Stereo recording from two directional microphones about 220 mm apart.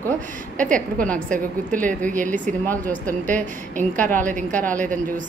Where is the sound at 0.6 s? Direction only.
5° left (ahead or behind).